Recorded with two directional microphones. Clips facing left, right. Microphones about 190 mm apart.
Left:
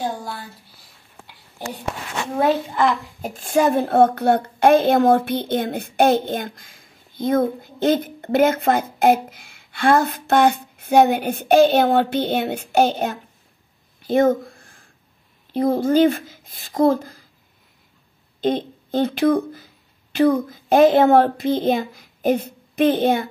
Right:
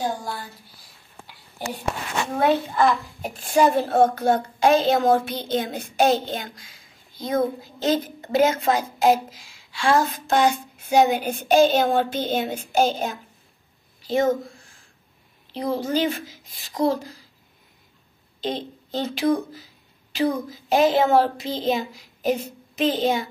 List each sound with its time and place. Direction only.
0.0 s speech: 5° left (ahead or behind)
3.3 s a child's voice: 50° left (ahead or behind)
14.0 s a sound: 55° left (ahead or behind)
15.5 s speech: 50° left (ahead or behind)
18.4 s speech: 55° left (ahead or behind)